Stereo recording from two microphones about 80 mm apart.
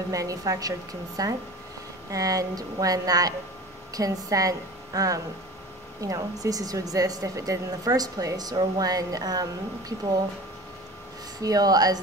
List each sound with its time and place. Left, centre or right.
0.1 s speech: right
11.4 s speech: right